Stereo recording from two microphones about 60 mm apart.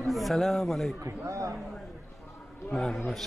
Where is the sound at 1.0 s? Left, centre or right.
Right.